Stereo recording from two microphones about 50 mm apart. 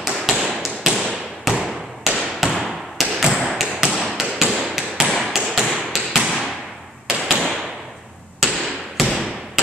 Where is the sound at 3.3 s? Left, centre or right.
Centre.